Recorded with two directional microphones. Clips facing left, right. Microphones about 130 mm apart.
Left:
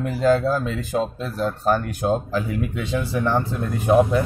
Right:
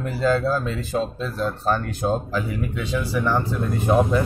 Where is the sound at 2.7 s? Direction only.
20° left (ahead or behind).